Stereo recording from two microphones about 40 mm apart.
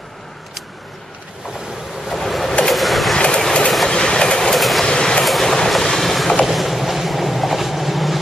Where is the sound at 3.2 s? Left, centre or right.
Centre.